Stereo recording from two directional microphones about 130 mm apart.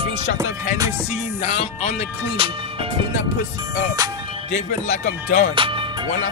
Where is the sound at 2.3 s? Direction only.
45° right (ahead or behind).